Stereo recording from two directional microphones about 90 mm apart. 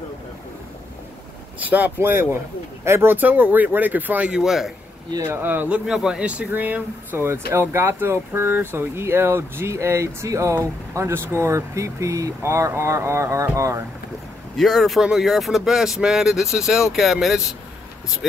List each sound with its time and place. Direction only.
1.7 s speech: 20° right (ahead or behind); by 4.7 s 5° right (ahead or behind)
5.3 s speech: 20° right (ahead or behind)
5.9 s speech: 10° right (ahead or behind); by 13.8 s 35° right (ahead or behind)
14.6 s speech: centre (ahead or behind)